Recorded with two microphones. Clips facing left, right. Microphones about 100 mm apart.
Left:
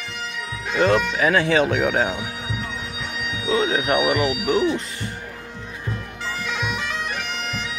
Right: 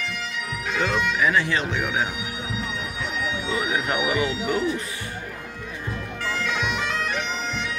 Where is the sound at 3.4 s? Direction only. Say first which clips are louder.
Left 7 dB; 60° left (ahead or behind).